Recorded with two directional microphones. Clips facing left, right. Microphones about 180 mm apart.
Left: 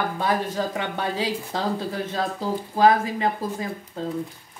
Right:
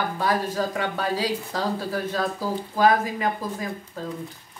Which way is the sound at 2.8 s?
30° left (ahead or behind).